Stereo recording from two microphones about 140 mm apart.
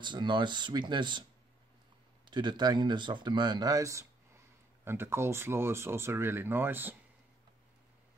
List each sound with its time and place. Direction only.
0.0 s speech: 35° right (ahead or behind)
2.3 s speech: 30° right (ahead or behind); by 7.0 s 15° right (ahead or behind)